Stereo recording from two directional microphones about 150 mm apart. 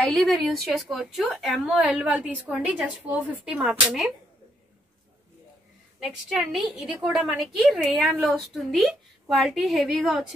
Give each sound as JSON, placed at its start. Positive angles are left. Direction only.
{"t": 0.0, "sound": "a woman's voice", "side_deg": 0}
{"t": 6.2, "sound": "a woman's voice", "side_deg": 0}